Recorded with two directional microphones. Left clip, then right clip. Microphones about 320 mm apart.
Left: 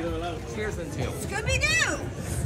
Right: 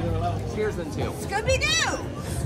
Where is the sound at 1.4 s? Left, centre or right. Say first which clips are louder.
Right 2 dB; right.